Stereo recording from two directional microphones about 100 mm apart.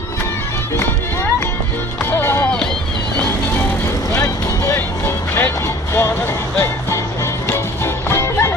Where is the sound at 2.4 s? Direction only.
5° left (ahead or behind).